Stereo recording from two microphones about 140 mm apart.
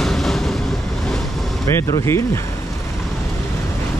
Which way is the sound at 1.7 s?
20° left (ahead or behind).